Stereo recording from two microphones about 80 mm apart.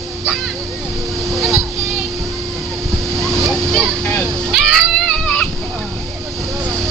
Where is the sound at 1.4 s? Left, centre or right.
Centre.